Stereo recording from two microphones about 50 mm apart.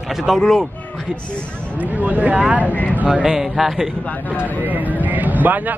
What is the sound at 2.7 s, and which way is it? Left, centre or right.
Speech, left.